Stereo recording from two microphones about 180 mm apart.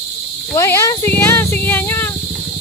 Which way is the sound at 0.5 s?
15° left (ahead or behind).